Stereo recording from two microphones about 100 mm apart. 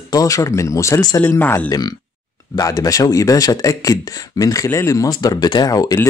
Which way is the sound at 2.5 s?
35° left (ahead or behind).